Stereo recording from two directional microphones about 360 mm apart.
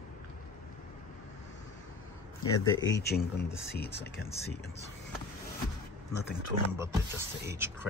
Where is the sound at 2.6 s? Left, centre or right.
Left.